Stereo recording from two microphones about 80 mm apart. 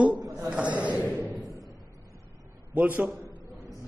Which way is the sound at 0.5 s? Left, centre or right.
Centre.